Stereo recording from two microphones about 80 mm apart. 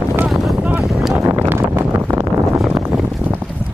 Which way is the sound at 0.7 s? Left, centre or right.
Centre.